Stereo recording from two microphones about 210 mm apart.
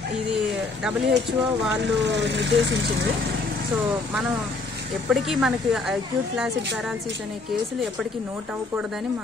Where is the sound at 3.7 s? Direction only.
Centre (ahead or behind).